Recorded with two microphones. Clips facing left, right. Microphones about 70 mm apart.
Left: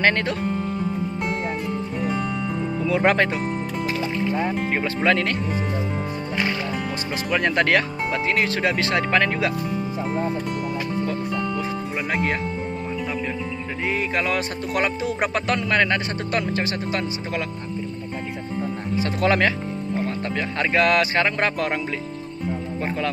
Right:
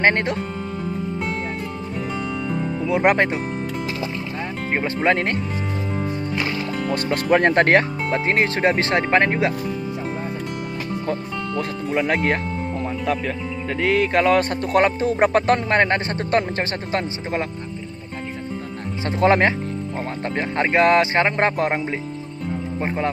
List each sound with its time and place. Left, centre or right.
0.0 s speech: right
2.0 s music: centre
2.8 s speech: right
4.7 s speech: right
6.9 s music: right
11.1 s speech: right
13.8 s music: right
18.9 s speech: right